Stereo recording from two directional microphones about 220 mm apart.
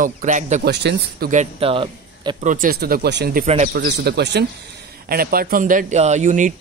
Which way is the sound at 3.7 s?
45° right (ahead or behind).